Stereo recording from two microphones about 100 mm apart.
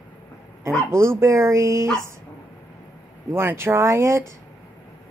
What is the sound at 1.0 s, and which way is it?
Speech, 25° right (ahead or behind).